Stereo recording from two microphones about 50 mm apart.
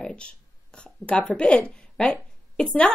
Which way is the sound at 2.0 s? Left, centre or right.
Left.